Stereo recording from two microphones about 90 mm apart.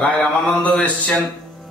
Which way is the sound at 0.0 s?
10° left (ahead or behind).